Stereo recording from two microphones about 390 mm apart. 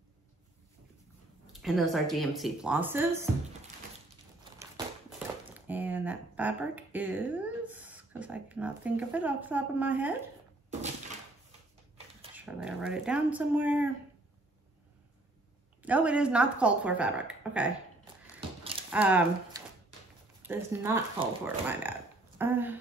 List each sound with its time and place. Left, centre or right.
1.5 s a woman's voice: centre
5.5 s speech: centre
10.7 s a sound: centre
12.2 s a woman's voice: centre
15.8 s a woman's voice: centre
18.6 s a sound: centre
18.9 s a woman's voice: centre